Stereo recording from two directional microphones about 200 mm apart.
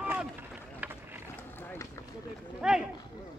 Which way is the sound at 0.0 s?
5° right (ahead or behind).